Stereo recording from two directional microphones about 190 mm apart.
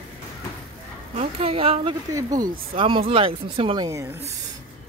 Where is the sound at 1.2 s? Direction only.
30° right (ahead or behind).